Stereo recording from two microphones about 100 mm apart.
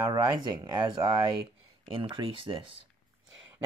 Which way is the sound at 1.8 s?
60° right (ahead or behind).